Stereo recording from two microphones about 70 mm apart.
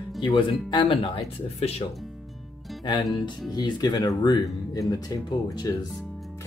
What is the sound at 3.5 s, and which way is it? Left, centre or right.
Speech, left.